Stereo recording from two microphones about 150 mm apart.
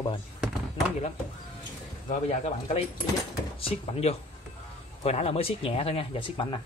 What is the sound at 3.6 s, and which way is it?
Speech, 40° left (ahead or behind).